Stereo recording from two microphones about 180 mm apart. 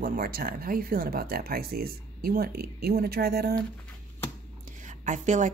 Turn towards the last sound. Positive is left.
turn(degrees=-40)  # may be behind; listen again after turning